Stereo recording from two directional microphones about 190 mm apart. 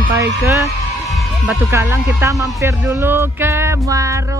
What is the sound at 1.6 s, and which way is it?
Speech, 15° right (ahead or behind).